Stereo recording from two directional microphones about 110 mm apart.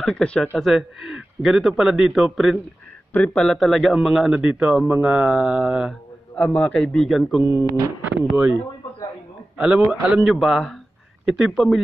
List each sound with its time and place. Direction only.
0.0 s speech: 10° left (ahead or behind)
3.1 s speech: 10° left (ahead or behind)
4.4 s speech: 10° right (ahead or behind)
6.3 s speech: 10° left (ahead or behind)
7.4 s speech: 25° right (ahead or behind)
8.2 s speech: 15° right (ahead or behind)
9.8 s speech: 5° right (ahead or behind)